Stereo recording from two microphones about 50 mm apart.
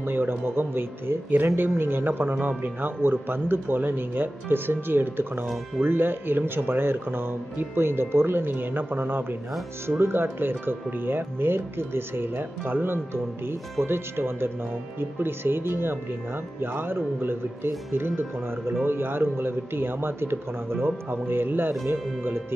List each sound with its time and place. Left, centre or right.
0.0 s speech: right